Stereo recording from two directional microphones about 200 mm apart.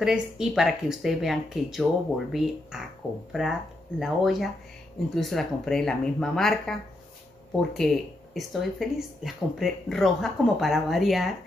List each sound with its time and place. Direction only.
0.0 s speech: 5° right (ahead or behind)